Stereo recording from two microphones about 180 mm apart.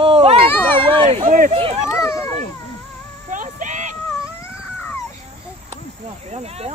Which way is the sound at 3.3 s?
45° right (ahead or behind).